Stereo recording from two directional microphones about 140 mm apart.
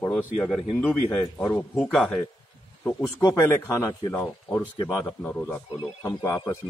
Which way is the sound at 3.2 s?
20° left (ahead or behind).